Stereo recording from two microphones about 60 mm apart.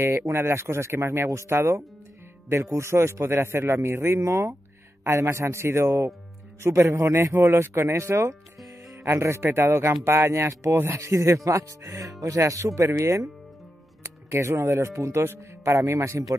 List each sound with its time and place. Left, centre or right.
0.0 s speech: right